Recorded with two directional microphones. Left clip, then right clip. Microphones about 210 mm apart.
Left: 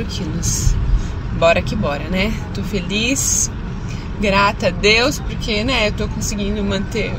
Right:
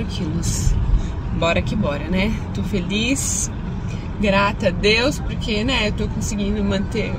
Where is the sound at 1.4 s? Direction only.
10° right (ahead or behind).